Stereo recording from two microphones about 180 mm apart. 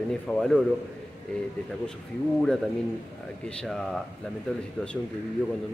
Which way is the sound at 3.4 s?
5° left (ahead or behind).